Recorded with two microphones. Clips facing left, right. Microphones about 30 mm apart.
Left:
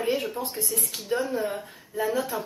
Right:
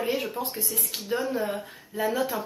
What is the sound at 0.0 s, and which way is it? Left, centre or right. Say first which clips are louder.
Speech: left 1 dB; centre.